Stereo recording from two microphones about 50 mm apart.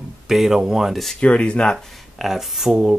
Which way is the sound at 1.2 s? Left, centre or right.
Left.